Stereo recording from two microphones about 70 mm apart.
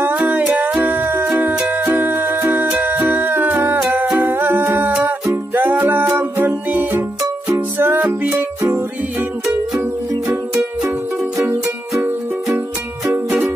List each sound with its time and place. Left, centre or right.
0.0 s music: right